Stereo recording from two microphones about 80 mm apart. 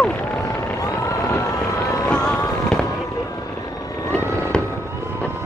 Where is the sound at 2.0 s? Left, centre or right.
Centre.